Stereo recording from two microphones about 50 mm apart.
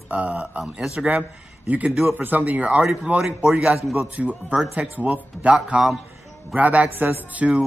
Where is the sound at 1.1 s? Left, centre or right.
Right.